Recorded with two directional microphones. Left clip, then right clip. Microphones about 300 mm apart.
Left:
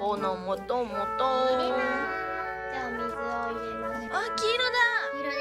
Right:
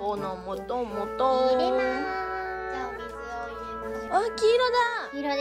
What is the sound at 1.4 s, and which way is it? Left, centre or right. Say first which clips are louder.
Music: right 2 dB; right.